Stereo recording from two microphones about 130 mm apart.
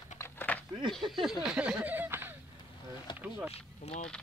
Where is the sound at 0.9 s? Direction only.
Centre (ahead or behind); by 3.5 s 20° right (ahead or behind).